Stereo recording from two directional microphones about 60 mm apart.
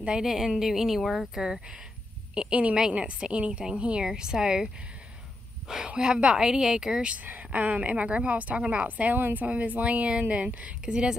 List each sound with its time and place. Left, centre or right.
0.0 s a woman's voice: centre
5.7 s a woman's voice: centre
7.2 s a woman's voice: right